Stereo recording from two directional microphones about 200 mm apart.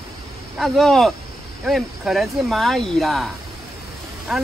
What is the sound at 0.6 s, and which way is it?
Speech, centre (ahead or behind).